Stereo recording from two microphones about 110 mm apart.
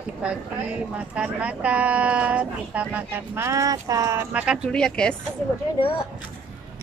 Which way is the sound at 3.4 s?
30° right (ahead or behind).